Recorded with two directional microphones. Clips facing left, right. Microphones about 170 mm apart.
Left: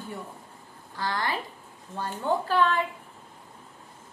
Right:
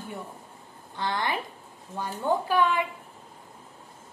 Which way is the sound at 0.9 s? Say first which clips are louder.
Right 1 dB; 20° right (ahead or behind).